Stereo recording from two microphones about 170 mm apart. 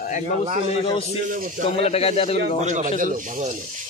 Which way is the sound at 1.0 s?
50° right (ahead or behind).